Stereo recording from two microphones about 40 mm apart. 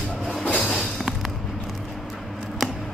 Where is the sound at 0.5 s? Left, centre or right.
Left.